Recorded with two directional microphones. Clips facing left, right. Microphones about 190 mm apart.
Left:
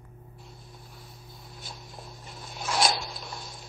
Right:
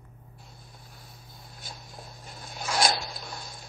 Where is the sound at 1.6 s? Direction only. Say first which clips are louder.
Even; centre (ahead or behind).